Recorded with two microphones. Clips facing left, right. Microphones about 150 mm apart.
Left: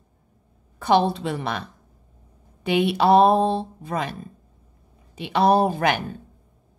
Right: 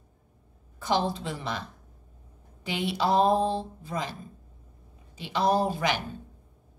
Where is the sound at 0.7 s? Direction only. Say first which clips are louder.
Left 8 dB; 65° left (ahead or behind).